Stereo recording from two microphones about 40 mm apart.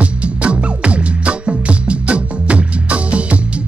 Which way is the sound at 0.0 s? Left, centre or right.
Right.